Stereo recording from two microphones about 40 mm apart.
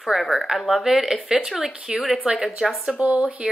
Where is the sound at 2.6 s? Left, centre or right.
Centre.